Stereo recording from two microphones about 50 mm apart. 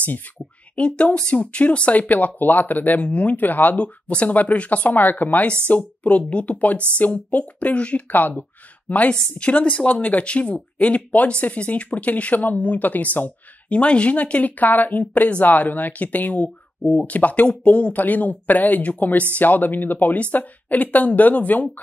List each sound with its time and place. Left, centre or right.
0.0 s speech: left
0.7 s speech: left
3.7 s speech: left